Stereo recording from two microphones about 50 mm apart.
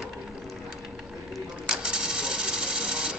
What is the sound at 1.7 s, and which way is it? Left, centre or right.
Cash register, centre.